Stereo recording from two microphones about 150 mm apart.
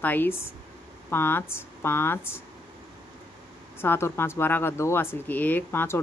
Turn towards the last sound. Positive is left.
turn(degrees=15)  # may be behind; listen again after turning